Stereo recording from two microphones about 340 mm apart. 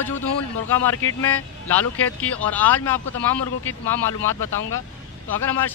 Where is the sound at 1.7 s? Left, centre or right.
Centre.